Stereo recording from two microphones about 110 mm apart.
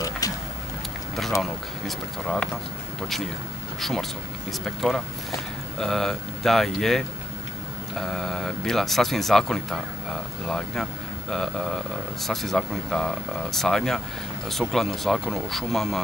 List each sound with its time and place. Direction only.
0.2 s a sound: 35° left (ahead or behind)
1.4 s speech: 5° left (ahead or behind)
4.5 s speech: centre (ahead or behind)